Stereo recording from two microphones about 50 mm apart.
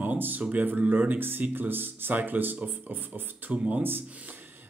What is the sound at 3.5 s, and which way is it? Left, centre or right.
Speech, right.